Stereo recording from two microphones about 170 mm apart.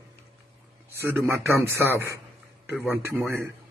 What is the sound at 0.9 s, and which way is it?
A man's voice, 15° right (ahead or behind).